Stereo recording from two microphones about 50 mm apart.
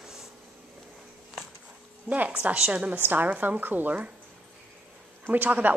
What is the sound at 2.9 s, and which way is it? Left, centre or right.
A woman's voice, right.